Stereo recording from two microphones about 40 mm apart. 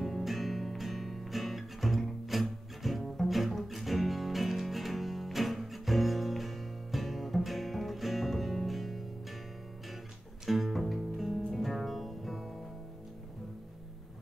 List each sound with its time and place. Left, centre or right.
0.0 s music: centre
10.4 s music: centre